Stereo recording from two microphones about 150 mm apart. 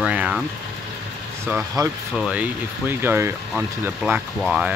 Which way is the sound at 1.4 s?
20° right (ahead or behind).